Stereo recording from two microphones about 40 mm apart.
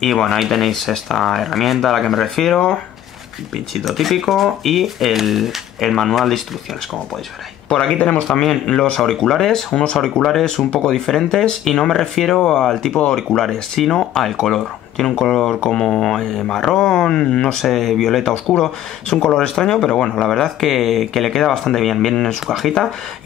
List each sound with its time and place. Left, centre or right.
0.0 s speech: centre
5.8 s speech: centre
8.3 s speech: centre
13.4 s speech: centre
17.6 s speech: centre
19.2 s speech: centre